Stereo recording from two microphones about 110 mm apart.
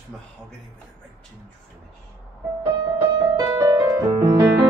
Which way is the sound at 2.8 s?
35° right (ahead or behind).